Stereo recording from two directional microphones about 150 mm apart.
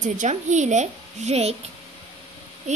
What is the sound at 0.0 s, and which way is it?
A child's voice, 55° right (ahead or behind).